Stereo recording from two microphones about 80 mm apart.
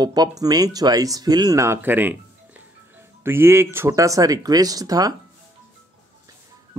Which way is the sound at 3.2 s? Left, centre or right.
Right.